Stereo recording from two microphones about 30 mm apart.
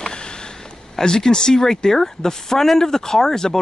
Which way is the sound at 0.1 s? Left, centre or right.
Left.